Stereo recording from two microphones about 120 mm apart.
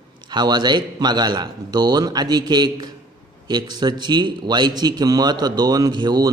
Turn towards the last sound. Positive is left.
turn(degrees=-35)  # may be behind; listen again after turning